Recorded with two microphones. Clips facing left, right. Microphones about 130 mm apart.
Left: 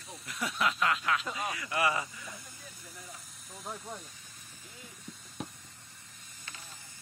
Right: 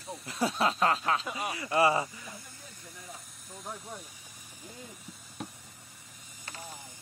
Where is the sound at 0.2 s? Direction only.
30° right (ahead or behind).